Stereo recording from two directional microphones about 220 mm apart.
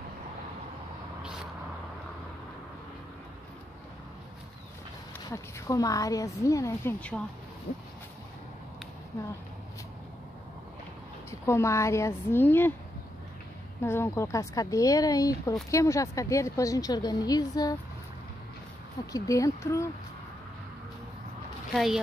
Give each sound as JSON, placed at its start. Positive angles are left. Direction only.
{"t": 5.3, "sound": "a woman's voice", "side_deg": 15}
{"t": 11.2, "sound": "a woman's voice", "side_deg": 10}
{"t": 13.8, "sound": "a woman's voice", "side_deg": 10}
{"t": 19.1, "sound": "a woman's voice", "side_deg": 15}
{"t": 21.7, "sound": "speech", "side_deg": 0}